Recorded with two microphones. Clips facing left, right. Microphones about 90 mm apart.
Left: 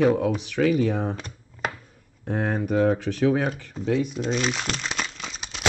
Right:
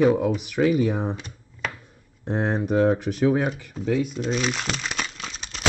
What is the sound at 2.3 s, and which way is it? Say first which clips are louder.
Speech: right 1 dB; 20° right (ahead or behind).